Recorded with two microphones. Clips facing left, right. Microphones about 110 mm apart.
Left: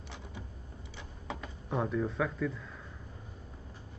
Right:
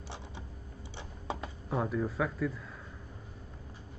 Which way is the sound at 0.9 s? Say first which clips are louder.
Right 3 dB; 30° right (ahead or behind).